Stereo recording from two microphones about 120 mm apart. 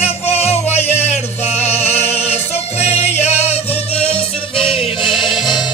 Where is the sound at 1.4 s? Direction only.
60° left (ahead or behind).